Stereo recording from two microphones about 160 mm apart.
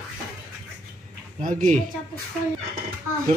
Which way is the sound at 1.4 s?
55° right (ahead or behind).